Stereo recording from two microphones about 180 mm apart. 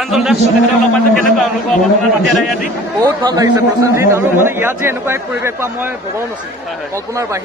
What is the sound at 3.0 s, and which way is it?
Speech, 20° right (ahead or behind).